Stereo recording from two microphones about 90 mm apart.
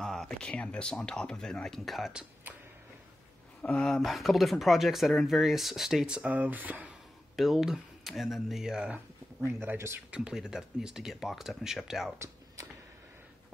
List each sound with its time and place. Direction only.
0.0 s a sound: 5° left (ahead or behind)
0.5 s speech: 15° left (ahead or behind); by 2.2 s centre (ahead or behind)
2.5 s a sound: 20° right (ahead or behind)
3.7 s speech: 5° left (ahead or behind); by 6.9 s 20° right (ahead or behind)
7.3 s speech: centre (ahead or behind)
9.5 s speech: 25° right (ahead or behind)
10.1 s speech: 10° right (ahead or behind)